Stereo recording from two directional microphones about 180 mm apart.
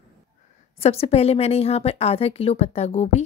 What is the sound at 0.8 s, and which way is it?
A woman's voice, 35° left (ahead or behind).